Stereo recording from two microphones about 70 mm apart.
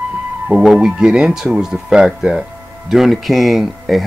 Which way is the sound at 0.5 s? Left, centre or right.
Centre.